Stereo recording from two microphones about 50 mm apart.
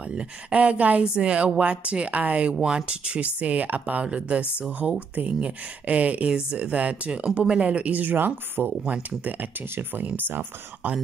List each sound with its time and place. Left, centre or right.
0.1 s speech: right